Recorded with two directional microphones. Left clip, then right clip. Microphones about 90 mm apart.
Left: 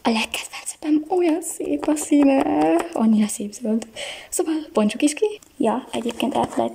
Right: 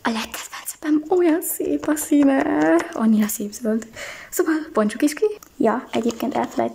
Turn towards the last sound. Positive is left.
turn(degrees=15)  # may be behind; listen again after turning